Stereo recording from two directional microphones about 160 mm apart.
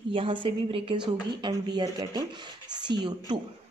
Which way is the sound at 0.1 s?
30° right (ahead or behind).